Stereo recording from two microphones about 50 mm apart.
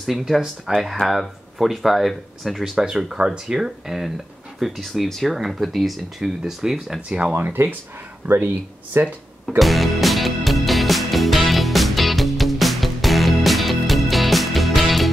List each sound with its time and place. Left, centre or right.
0.7 s speech: centre
1.6 s speech: centre
2.8 s speech: centre
7.1 s speech: right
7.3 s speech: right
8.2 s speech: right
9.0 s speech: right
9.6 s music: centre